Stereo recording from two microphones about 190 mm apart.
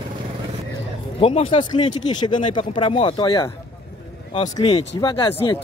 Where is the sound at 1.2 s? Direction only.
30° left (ahead or behind).